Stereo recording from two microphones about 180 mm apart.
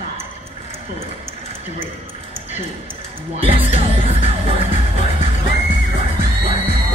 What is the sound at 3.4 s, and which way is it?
Music, 30° right (ahead or behind).